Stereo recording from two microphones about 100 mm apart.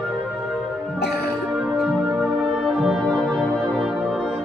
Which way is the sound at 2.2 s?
Centre (ahead or behind).